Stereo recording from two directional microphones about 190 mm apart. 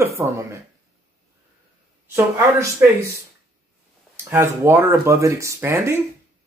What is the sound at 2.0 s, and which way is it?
Speech, 15° right (ahead or behind).